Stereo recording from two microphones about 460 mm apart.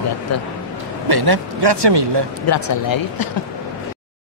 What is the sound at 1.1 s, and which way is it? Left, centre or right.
Speech, right.